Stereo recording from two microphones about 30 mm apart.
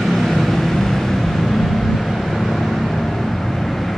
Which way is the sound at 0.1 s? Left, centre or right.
Centre.